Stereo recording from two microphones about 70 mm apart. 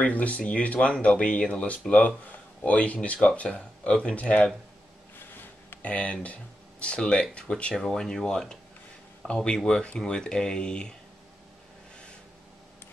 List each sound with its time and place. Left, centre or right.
0.0 s speech: centre
5.7 s a sound: left
6.2 s speech: centre